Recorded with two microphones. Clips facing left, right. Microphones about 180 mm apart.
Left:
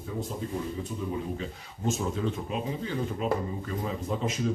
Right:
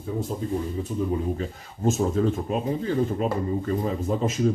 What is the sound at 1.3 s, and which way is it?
Speech, 45° right (ahead or behind).